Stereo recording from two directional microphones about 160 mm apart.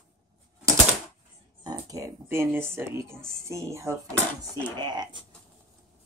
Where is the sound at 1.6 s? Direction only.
25° right (ahead or behind).